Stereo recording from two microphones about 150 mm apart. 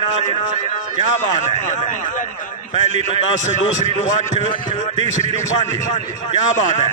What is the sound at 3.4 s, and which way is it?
A man's voice, 55° left (ahead or behind).